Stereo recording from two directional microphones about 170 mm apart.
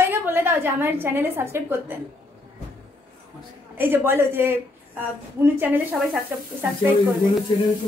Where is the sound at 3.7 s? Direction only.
15° right (ahead or behind).